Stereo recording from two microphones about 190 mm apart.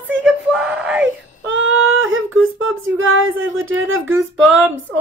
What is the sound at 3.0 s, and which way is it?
Speech, 90° right.